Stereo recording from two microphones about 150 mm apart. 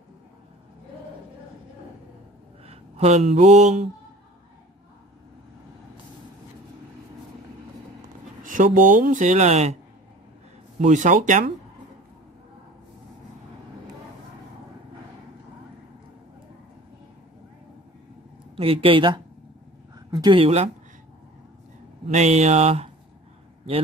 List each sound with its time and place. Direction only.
2.6 s speech: 40° right (ahead or behind)
8.4 s speech: 65° right (ahead or behind); by 9.8 s 45° right (ahead or behind)
10.9 s speech: 55° right (ahead or behind)
18.6 s speech: 40° right (ahead or behind)
22.1 s speech: 50° right (ahead or behind)